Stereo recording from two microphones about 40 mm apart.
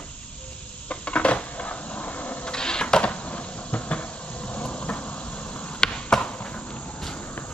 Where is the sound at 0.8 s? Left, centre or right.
Left.